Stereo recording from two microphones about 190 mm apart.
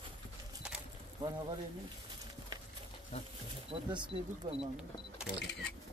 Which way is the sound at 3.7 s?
25° right (ahead or behind).